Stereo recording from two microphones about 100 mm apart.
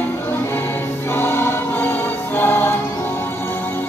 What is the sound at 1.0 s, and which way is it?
Music, 20° left (ahead or behind).